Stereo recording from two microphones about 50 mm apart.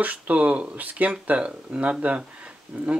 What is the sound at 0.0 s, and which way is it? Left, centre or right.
Speech, right.